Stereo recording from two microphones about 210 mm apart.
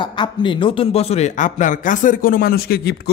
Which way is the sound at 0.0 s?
20° left (ahead or behind).